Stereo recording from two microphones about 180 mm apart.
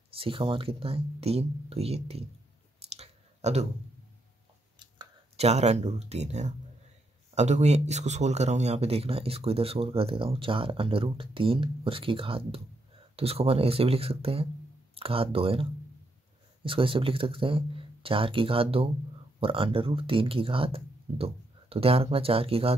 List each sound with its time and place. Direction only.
0.1 s speech: 30° right (ahead or behind)
3.0 s clicking: 35° right (ahead or behind)
4.7 s speech: 30° right (ahead or behind)
16.6 s speech: 30° right (ahead or behind)